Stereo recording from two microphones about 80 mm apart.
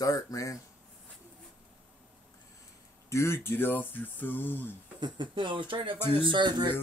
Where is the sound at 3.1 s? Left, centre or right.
Left.